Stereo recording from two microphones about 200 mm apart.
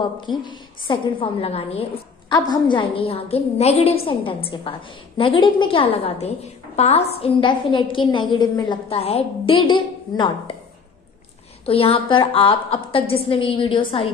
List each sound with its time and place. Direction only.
0.3 s a woman's voice: 20° left (ahead or behind)
11.6 s a woman's voice: 30° left (ahead or behind)